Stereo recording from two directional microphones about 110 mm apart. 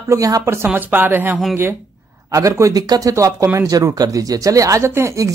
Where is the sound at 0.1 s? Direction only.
30° right (ahead or behind).